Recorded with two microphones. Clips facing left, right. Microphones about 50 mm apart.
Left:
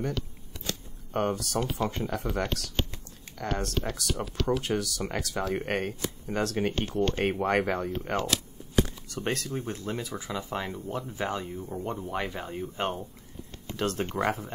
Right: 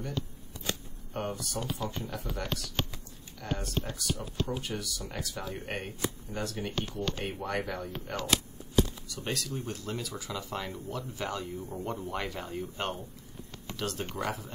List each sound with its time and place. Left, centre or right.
1.1 s speech: left
4.5 s speech: left
6.7 s speech: left
9.0 s speech: left
11.5 s speech: centre; by 12.9 s left
13.7 s speech: left